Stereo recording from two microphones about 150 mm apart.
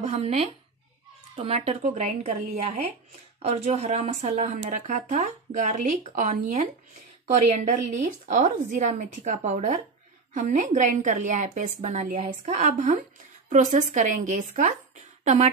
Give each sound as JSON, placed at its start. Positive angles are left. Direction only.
{"t": 0.0, "sound": "speech", "side_deg": -45}
{"t": 7.3, "sound": "a woman's voice", "side_deg": -50}